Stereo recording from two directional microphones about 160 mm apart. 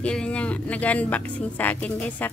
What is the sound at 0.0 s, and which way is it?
Speech, 5° left (ahead or behind).